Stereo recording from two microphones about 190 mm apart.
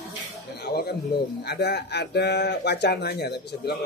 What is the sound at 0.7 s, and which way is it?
Speech, 55° left (ahead or behind).